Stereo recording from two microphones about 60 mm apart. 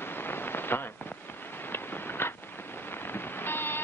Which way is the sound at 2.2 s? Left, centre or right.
Left.